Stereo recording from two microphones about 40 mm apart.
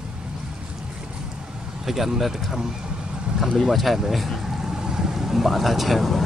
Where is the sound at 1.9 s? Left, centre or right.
Centre.